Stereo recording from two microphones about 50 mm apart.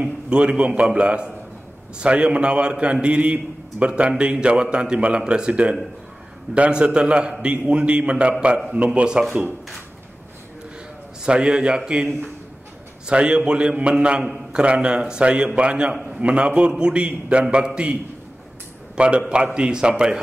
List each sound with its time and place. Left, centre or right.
0.0 s a man's voice: right
11.2 s a man's voice: centre
14.2 s a man's voice: centre
14.6 s a man's voice: right
18.9 s a man's voice: right